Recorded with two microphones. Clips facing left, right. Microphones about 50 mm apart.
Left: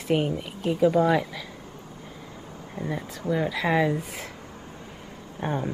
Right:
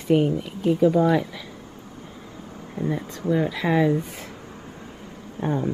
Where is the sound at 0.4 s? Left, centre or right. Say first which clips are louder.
Right 4 dB; centre.